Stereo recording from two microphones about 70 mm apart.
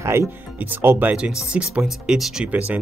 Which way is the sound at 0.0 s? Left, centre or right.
Right.